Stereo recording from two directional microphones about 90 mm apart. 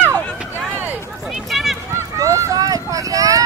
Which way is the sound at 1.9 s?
35° right (ahead or behind).